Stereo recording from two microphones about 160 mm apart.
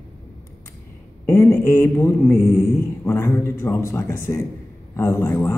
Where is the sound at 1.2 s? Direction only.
15° left (ahead or behind).